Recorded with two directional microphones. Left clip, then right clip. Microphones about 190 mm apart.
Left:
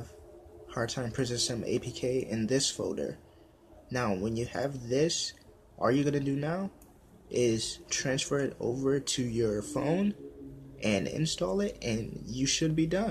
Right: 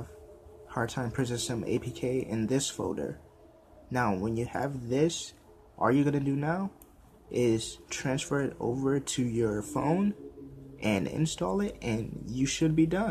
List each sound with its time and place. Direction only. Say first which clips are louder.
0.7 s speech: right 1 dB; 20° right (ahead or behind)
7.9 s speech: left 1 dB; 25° right (ahead or behind)